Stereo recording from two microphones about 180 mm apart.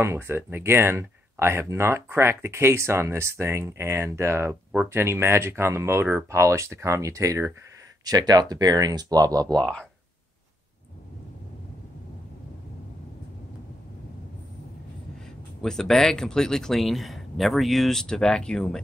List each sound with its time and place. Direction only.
0.0 s speech: 15° right (ahead or behind)
9.5 s speech: 5° left (ahead or behind)
15.6 s speech: 5° left (ahead or behind)